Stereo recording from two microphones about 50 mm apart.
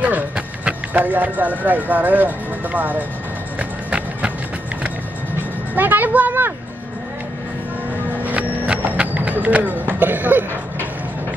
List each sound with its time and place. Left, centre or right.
0.7 s speech: right
3.5 s music: right
5.8 s speech: right
8.3 s a sound: right